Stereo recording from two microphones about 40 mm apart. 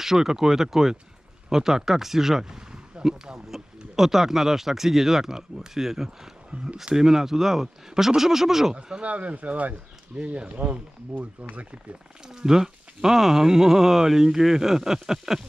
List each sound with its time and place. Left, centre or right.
0.0 s speech: centre
9.0 s speech: right
10.1 s speech: right
12.3 s speech: centre